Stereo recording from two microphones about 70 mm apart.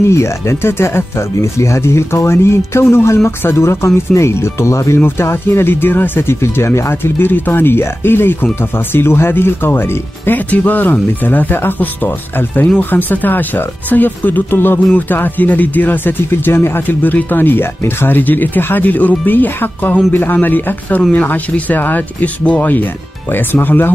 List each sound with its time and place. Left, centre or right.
0.1 s speech: left